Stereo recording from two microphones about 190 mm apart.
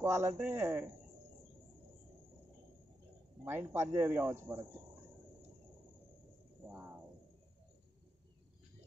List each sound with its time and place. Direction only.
0.0 s speech: 15° right (ahead or behind)
3.4 s speech: 10° right (ahead or behind)
6.7 s a sound: 15° right (ahead or behind)